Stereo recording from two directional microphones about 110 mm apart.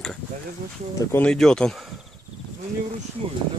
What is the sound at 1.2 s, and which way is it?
Speech, 5° left (ahead or behind).